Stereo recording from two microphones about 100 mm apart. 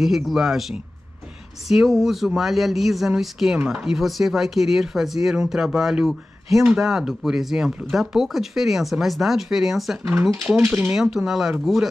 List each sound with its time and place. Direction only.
0.0 s speech: centre (ahead or behind)
10.4 s speech: 25° right (ahead or behind)
10.7 s speech: 10° right (ahead or behind)